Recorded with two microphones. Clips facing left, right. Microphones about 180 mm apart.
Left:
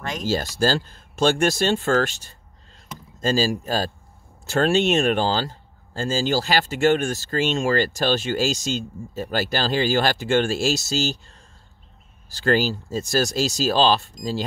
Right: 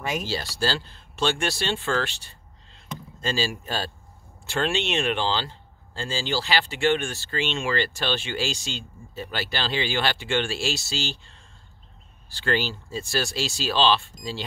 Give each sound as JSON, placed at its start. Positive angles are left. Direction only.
{"t": 0.2, "sound": "speech", "side_deg": 45}